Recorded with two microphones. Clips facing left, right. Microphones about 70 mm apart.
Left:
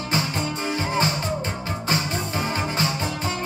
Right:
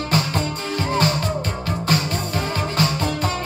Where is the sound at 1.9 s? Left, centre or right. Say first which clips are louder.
Right 2 dB; left.